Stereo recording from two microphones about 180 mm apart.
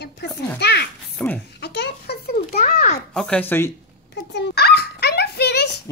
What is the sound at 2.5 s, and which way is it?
Speech, 40° left (ahead or behind).